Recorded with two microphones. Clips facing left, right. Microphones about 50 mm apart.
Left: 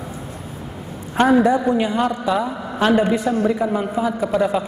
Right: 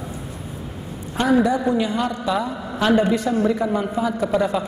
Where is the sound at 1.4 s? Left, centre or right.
Left.